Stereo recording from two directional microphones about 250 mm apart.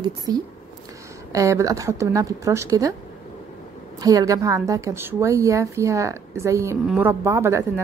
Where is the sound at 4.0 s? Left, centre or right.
Centre.